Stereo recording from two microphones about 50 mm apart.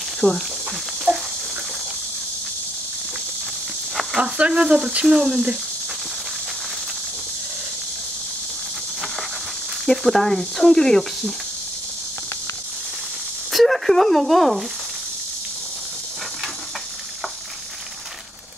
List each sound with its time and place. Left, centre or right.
0.2 s speech: left
1.1 s a sound: right
4.2 s speech: right
5.0 s speech: centre
5.3 s speech: right
9.8 s speech: centre
13.5 s speech: centre